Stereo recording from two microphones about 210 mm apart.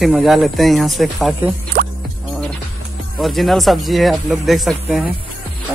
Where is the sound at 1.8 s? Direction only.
45° right (ahead or behind).